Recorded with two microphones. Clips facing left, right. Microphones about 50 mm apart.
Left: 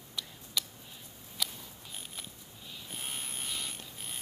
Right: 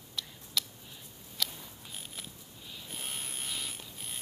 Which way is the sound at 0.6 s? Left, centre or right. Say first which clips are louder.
Right 1 dB; centre.